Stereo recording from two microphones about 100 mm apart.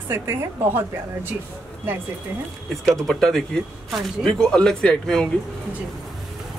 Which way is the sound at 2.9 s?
5° left (ahead or behind).